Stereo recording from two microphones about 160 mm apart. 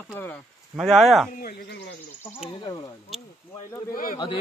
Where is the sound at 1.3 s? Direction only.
80° left.